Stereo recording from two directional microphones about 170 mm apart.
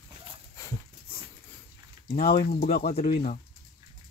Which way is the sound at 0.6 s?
20° left (ahead or behind).